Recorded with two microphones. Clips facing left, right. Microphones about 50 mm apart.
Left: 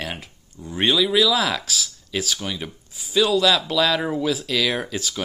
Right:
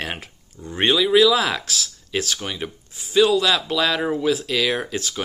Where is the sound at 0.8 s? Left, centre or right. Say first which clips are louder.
Right 3 dB; centre.